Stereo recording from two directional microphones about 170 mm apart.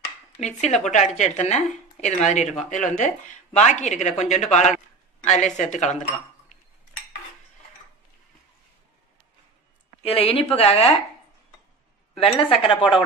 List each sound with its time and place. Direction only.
0.4 s speech: 40° left (ahead or behind)
10.0 s a woman's voice: 35° left (ahead or behind)
12.2 s a woman's voice: 30° left (ahead or behind)